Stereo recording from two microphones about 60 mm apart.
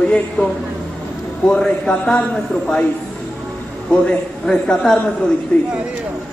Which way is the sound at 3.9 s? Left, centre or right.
Centre.